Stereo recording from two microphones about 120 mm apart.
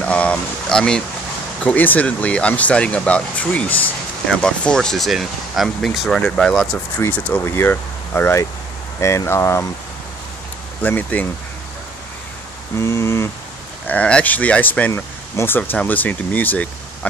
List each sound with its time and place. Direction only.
0.0 s speech: 10° left (ahead or behind)
7.0 s speech: 15° left (ahead or behind)
10.8 s speech: 15° left (ahead or behind)
12.7 s speech: 20° left (ahead or behind)
13.8 s speech: 10° left (ahead or behind)